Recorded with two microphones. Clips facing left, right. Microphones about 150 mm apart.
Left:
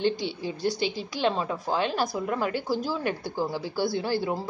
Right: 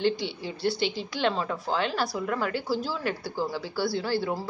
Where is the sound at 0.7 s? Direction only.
15° left (ahead or behind).